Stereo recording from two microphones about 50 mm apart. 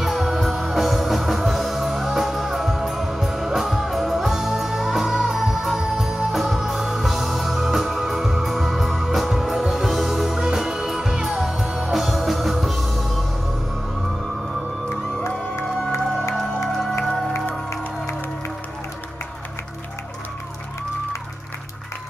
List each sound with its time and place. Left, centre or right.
0.0 s music: centre
15.9 s music: left